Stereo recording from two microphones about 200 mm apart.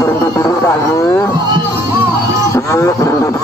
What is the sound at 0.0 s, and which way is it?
Music, 15° left (ahead or behind).